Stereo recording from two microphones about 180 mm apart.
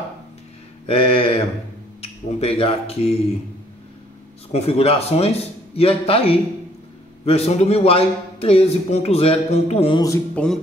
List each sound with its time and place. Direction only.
0.8 s a man's voice: 30° left (ahead or behind)
4.5 s a man's voice: 35° left (ahead or behind)
10.3 s a sound: 5° left (ahead or behind)